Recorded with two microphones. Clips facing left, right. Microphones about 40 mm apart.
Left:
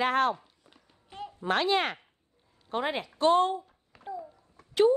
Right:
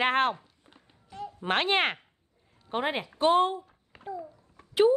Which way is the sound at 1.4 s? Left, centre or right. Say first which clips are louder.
Even; right.